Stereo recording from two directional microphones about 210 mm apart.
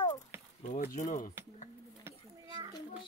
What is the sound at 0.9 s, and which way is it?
Speech, 40° left (ahead or behind).